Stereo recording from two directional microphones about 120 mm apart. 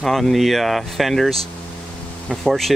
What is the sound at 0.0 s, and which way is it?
Speech, centre (ahead or behind).